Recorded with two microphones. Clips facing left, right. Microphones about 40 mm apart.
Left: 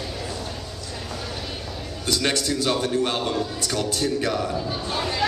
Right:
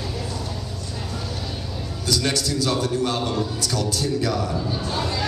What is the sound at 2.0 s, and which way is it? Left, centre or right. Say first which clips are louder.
A man's voice: even; left.